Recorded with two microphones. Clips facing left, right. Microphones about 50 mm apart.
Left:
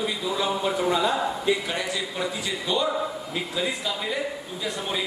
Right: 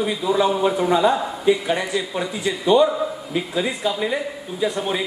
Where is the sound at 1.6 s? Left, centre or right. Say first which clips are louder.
Right 6 dB; centre.